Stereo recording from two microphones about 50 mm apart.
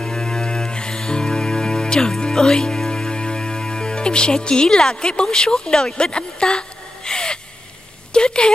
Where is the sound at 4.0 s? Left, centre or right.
Centre.